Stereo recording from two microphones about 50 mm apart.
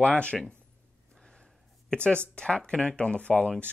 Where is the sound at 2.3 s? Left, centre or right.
Centre.